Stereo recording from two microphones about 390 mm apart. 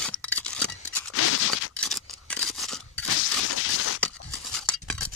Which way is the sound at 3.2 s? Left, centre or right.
Left.